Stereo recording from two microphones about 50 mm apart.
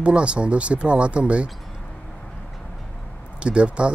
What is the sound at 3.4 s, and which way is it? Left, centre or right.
Speech, right.